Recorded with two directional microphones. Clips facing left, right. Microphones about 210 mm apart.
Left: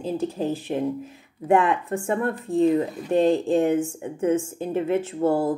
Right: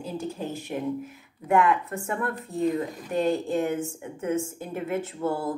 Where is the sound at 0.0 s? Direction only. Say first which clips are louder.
Left 6 dB; 35° left (ahead or behind).